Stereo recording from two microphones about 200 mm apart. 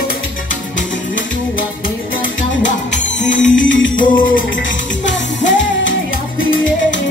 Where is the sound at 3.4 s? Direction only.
70° left (ahead or behind).